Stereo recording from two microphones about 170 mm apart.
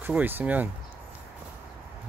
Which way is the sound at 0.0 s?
10° right (ahead or behind).